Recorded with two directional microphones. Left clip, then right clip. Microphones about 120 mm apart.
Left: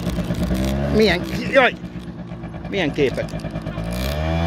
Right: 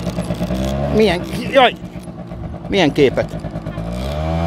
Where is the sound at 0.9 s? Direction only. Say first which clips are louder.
Right 2 dB; 15° right (ahead or behind).